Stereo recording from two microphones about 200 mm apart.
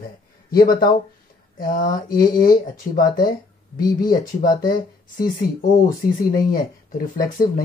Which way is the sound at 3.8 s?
20° left (ahead or behind).